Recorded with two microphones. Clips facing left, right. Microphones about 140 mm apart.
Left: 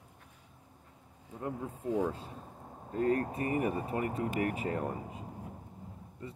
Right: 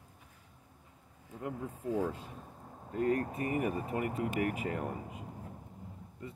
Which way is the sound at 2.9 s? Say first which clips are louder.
Left 1 dB; 35° left (ahead or behind).